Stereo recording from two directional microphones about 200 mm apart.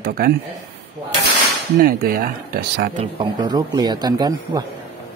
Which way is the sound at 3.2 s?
20° right (ahead or behind).